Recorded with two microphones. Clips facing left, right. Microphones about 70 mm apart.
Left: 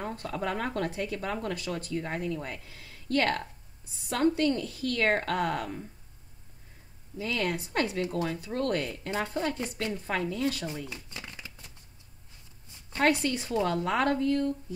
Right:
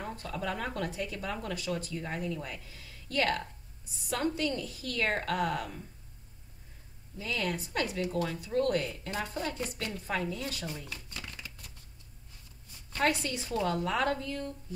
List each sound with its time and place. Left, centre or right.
0.0 s speech: left
7.7 s speech: left
8.5 s speech: left
12.9 s speech: left